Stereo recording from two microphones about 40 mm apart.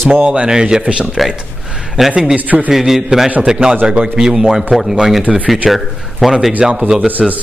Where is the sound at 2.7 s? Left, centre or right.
Centre.